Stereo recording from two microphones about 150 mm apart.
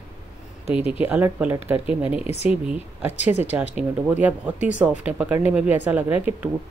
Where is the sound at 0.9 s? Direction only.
10° right (ahead or behind).